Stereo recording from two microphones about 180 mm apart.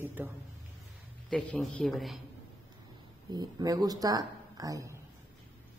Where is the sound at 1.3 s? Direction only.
5° left (ahead or behind).